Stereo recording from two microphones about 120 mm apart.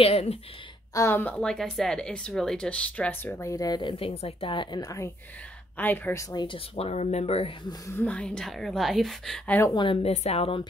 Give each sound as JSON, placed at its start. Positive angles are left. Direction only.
{"t": 0.0, "sound": "speech", "side_deg": 55}
{"t": 0.9, "sound": "speech", "side_deg": 20}
{"t": 3.3, "sound": "speech", "side_deg": 25}
{"t": 3.9, "sound": "speech", "side_deg": 55}
{"t": 5.8, "sound": "speech", "side_deg": 15}
{"t": 6.3, "sound": "speech", "side_deg": 45}
{"t": 7.8, "sound": "a woman's voice", "side_deg": 15}
{"t": 10.0, "sound": "speech", "side_deg": 60}